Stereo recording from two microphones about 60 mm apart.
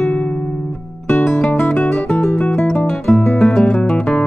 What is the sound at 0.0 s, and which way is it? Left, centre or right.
Music, centre.